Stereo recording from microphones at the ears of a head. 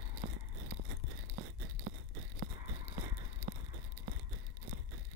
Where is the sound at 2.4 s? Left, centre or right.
Right.